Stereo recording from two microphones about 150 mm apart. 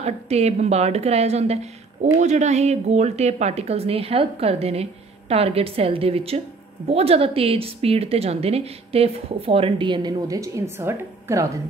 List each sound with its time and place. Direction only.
0.0 s a woman's voice: 45° right (ahead or behind); by 11.6 s 20° right (ahead or behind)